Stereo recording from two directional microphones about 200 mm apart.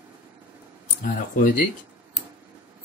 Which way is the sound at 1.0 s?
45° left (ahead or behind).